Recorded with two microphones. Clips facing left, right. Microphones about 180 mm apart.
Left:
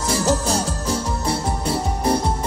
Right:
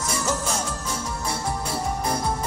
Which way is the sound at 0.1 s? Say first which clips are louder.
Left 8 dB; 35° left (ahead or behind).